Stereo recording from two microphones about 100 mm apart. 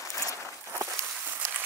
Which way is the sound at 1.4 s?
20° right (ahead or behind).